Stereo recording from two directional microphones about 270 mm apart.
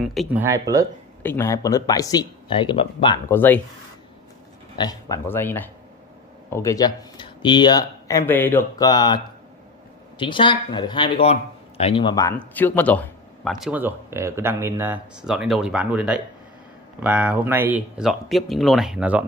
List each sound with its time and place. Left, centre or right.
0.0 s speech: centre
1.2 s speech: centre
4.7 s speech: centre